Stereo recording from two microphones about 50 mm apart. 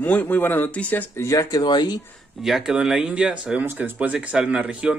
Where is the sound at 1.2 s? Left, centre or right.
Left.